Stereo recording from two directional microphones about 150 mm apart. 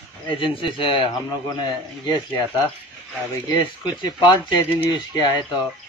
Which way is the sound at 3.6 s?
30° left (ahead or behind).